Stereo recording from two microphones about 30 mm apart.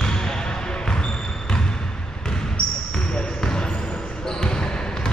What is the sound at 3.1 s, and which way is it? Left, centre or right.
Basketball bounce, left.